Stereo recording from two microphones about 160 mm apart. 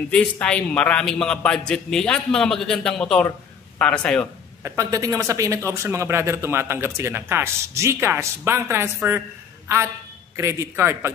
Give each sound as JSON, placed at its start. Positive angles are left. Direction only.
{"t": 0.1, "sound": "a man's voice", "side_deg": 5}
{"t": 4.6, "sound": "speech", "side_deg": -20}
{"t": 10.3, "sound": "speech", "side_deg": -20}